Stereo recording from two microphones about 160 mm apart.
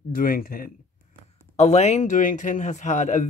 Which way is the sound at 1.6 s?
45° left (ahead or behind).